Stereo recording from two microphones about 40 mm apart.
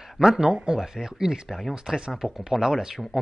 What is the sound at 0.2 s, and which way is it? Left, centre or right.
A woman's voice, centre.